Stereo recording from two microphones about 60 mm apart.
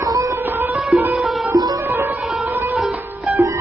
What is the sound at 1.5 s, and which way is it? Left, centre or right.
Music, right.